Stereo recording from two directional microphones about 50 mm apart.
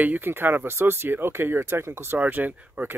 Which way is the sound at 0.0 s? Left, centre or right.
Right.